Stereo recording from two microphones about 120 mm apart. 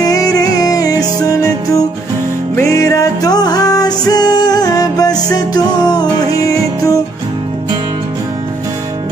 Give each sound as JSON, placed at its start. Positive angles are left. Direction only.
{"t": 0.0, "sound": "music", "side_deg": 30}